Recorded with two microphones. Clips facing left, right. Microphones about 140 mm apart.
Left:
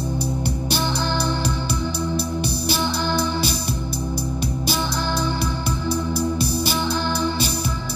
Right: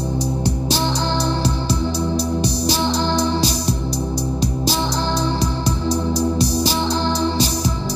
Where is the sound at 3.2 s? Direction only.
30° right (ahead or behind).